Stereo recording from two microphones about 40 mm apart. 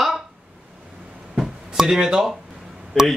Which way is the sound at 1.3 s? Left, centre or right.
Centre.